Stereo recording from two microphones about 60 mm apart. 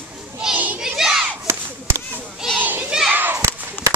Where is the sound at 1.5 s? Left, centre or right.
Right.